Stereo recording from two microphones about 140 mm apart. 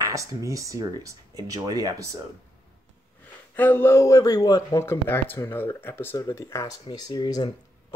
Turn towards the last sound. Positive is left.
turn(degrees=30)  # may be behind; listen again after turning